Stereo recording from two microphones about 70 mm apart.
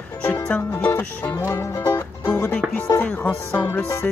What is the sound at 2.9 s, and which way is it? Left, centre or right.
Speech, left.